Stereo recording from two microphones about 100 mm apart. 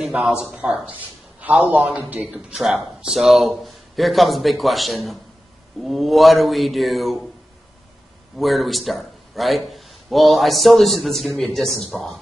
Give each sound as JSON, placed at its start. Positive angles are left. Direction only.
{"t": 0.0, "sound": "a man's voice", "side_deg": -10}
{"t": 2.1, "sound": "a man's voice", "side_deg": -5}
{"t": 8.4, "sound": "a man's voice", "side_deg": 0}